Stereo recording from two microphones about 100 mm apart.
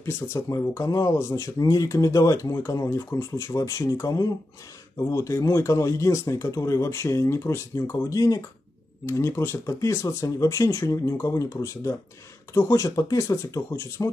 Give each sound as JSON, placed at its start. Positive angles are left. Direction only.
{"t": 0.0, "sound": "speech", "side_deg": 30}